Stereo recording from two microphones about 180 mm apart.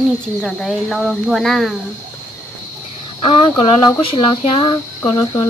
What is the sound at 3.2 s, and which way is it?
Speech, 30° left (ahead or behind).